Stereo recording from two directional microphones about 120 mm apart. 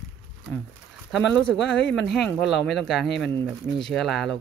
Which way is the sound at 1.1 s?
5° left (ahead or behind).